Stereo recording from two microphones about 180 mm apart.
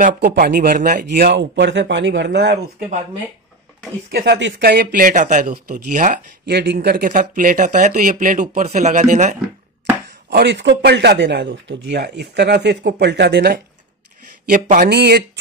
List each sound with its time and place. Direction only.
0.0 s a man's voice: 55° right (ahead or behind); by 2.6 s 70° right (ahead or behind)
4.1 s speech: 60° right (ahead or behind); by 6.2 s 45° right (ahead or behind)
6.4 s speech: 65° right (ahead or behind); by 9.4 s 40° right (ahead or behind)
10.3 s a man's voice: 75° right (ahead or behind)
14.5 s speech: 45° right (ahead or behind)
14.9 s speech: 65° right (ahead or behind)